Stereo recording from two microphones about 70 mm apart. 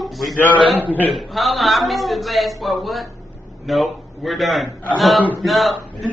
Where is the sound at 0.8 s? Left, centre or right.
Right.